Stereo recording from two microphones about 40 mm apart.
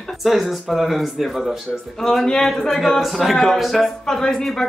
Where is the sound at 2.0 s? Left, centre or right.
Centre.